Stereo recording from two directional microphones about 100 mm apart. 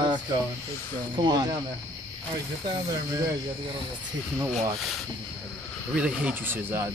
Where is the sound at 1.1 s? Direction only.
45° right (ahead or behind).